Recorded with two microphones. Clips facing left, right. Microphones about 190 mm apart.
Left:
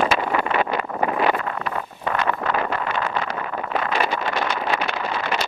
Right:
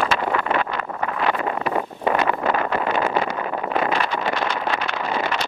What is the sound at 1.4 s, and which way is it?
Wind noise, 15° right (ahead or behind).